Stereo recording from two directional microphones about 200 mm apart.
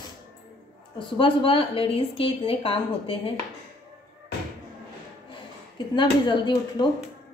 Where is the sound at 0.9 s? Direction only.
25° left (ahead or behind).